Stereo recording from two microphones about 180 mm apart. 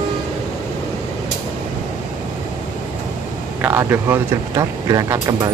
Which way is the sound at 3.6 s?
10° right (ahead or behind).